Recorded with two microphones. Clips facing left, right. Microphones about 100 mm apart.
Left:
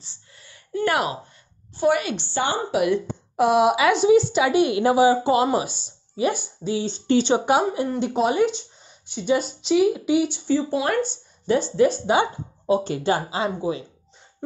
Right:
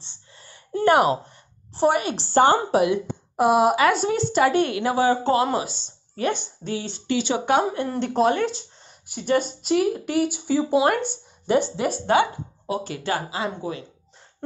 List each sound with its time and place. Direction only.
0.4 s a sound: 35° right (ahead or behind)
1.8 s speech: 30° right (ahead or behind)
2.9 s a woman's voice: 5° right (ahead or behind)
4.7 s speech: 20° left (ahead or behind)
7.1 s speech: 30° left (ahead or behind)
7.4 s a woman's voice: 10° left (ahead or behind)
10.2 s a woman's voice: 5° right (ahead or behind)
10.8 s speech: 15° right (ahead or behind)
12.1 s speech: 25° left (ahead or behind)